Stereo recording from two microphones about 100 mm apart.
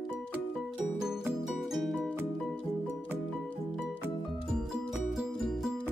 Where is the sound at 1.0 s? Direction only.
5° right (ahead or behind).